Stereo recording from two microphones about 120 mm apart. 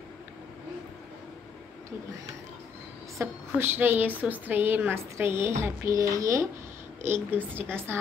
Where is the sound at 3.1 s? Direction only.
15° right (ahead or behind).